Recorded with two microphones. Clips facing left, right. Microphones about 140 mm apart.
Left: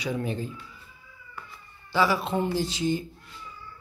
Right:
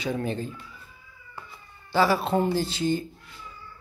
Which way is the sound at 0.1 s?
35° right (ahead or behind).